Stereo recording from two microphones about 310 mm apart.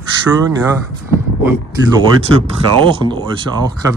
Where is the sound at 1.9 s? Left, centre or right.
Centre.